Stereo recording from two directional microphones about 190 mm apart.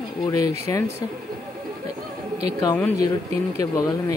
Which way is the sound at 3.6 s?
20° left (ahead or behind).